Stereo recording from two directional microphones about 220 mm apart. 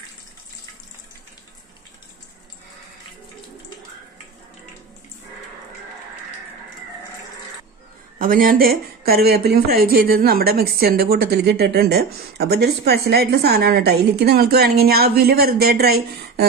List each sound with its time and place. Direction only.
8.2 s speech: 40° right (ahead or behind)